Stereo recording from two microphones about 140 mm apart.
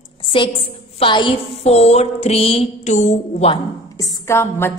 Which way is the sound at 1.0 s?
35° left (ahead or behind).